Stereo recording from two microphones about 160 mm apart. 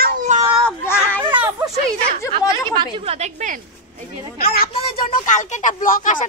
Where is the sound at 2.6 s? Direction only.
30° right (ahead or behind); by 3.6 s 45° right (ahead or behind).